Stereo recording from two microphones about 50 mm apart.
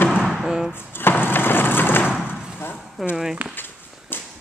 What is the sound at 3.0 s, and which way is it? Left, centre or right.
Speech, centre.